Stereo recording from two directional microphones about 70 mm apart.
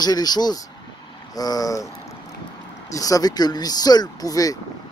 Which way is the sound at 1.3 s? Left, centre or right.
Left.